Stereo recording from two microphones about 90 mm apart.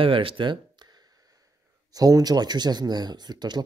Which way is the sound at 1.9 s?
45° right (ahead or behind).